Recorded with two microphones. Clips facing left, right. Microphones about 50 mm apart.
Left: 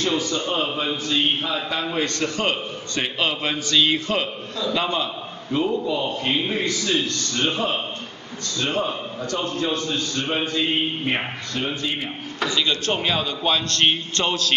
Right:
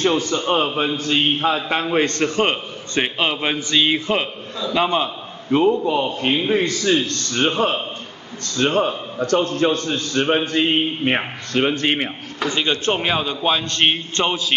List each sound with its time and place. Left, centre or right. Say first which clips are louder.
0.0 s a man's voice: right 4 dB; right
6.6 s a man's voice: right 4 dB; right
11.5 s a man's voice: right 9 dB; right
12.4 s a man's voice: right 3 dB; right; by 14.5 s centre